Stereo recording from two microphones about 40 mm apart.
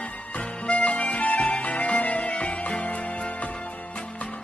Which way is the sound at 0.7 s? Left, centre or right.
Left.